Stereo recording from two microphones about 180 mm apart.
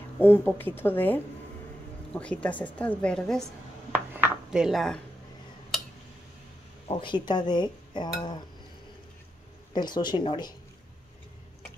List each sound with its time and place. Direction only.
0.2 s a woman's voice: 10° left (ahead or behind)
3.9 s dishes: 10° right (ahead or behind)
6.9 s speech: 25° left (ahead or behind)
9.8 s speech: 25° left (ahead or behind)